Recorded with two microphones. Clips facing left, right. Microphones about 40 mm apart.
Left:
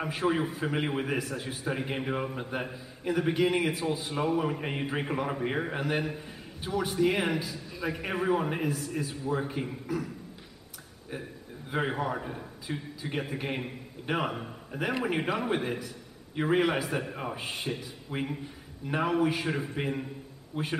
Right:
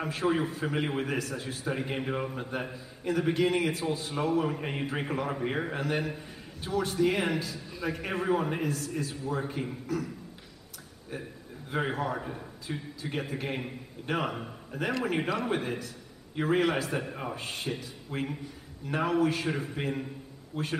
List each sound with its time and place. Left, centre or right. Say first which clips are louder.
0.0 s a man's voice: even; centre
11.7 s a man's voice: even; centre
20.5 s a man's voice: left 1 dB; centre